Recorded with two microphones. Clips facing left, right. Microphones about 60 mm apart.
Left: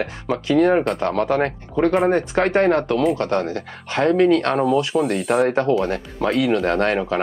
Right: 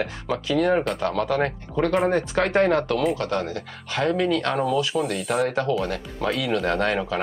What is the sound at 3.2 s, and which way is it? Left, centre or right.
Speech, left.